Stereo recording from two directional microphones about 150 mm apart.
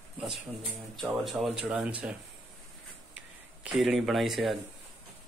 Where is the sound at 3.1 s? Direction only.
5° right (ahead or behind).